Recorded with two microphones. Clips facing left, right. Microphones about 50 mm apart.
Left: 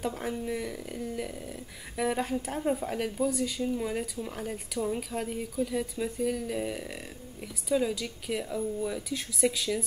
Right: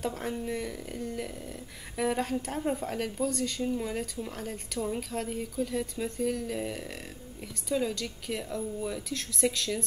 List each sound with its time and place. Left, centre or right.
0.0 s speech: centre